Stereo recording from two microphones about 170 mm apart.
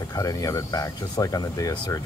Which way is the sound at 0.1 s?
20° left (ahead or behind).